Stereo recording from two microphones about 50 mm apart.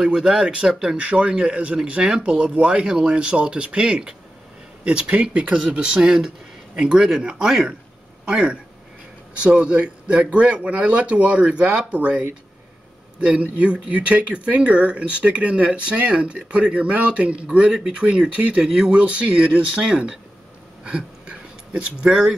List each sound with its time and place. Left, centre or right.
0.0 s speech: centre
0.9 s speech: right
13.4 s speech: right
20.8 s a sound: right